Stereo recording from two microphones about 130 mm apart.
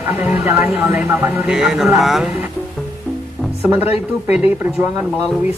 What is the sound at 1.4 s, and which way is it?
Speech, 5° right (ahead or behind).